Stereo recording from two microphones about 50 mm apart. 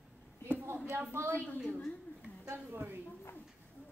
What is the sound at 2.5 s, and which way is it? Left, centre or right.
Speech, right.